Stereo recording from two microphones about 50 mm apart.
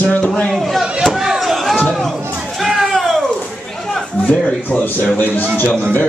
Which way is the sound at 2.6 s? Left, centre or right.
Centre.